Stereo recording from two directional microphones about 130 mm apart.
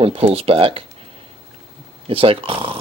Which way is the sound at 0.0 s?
45° right (ahead or behind).